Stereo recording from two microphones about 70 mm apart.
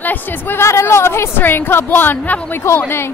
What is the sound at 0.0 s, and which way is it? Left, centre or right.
Speech, left.